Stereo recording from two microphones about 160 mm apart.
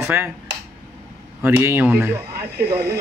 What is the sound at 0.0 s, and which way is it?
Speech, 15° right (ahead or behind).